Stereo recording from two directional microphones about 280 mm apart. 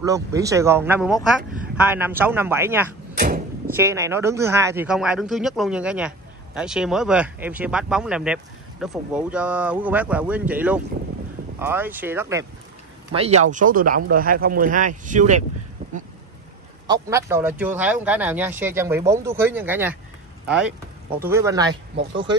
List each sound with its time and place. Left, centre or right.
0.0 s speech: centre
3.2 s door: right
3.6 s speech: centre
13.1 s speech: right
16.8 s speech: centre